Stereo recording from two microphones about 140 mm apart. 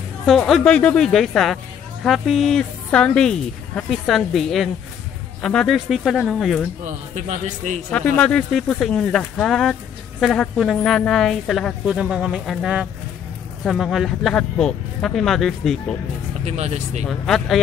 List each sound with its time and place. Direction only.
0.3 s speech: 5° left (ahead or behind)
6.8 s speech: 60° right (ahead or behind)
7.9 s speech: 10° left (ahead or behind)
16.4 s speech: 50° right (ahead or behind)
17.1 s speech: centre (ahead or behind)